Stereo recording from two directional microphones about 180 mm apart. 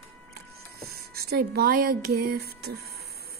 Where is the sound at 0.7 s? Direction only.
60° right (ahead or behind).